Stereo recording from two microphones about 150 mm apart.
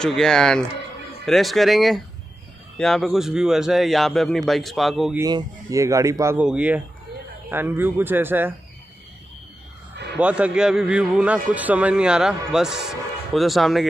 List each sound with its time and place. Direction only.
0.0 s a man's voice: 5° left (ahead or behind)
5.2 s speech: 25° right (ahead or behind)
6.4 s a man's voice: 10° right (ahead or behind)
10.1 s a man's voice: 10° right (ahead or behind)